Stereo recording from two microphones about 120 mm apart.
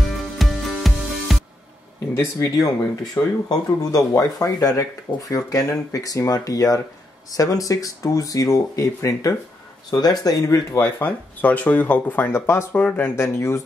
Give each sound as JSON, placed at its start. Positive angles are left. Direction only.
{"t": 0.0, "sound": "music", "side_deg": 0}
{"t": 2.1, "sound": "speech", "side_deg": 25}